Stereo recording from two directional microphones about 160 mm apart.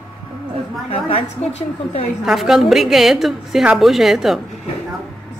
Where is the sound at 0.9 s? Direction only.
40° left (ahead or behind).